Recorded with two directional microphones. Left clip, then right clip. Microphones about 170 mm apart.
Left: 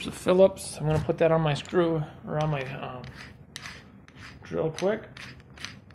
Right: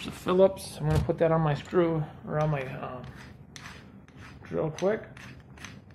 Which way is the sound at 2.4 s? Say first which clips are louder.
Even; 45° left (ahead or behind).